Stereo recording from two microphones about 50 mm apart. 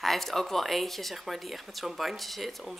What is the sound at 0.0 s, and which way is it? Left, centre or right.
Speech, centre.